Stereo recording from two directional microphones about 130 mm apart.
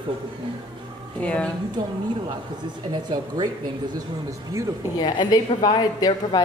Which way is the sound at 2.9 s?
35° right (ahead or behind).